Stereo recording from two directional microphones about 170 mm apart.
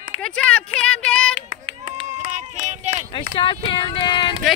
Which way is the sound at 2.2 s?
45° right (ahead or behind).